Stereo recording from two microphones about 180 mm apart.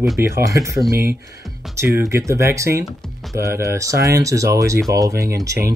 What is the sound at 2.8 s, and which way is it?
Speech, centre (ahead or behind).